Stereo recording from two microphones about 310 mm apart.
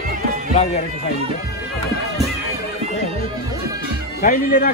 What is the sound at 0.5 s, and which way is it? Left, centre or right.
Speech, left.